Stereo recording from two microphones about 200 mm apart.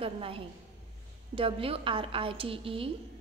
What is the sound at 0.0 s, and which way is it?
A woman's voice, 25° right (ahead or behind).